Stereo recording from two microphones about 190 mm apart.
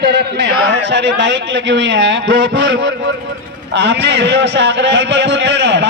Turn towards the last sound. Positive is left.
turn(degrees=-65)  # may be behind; listen again after turning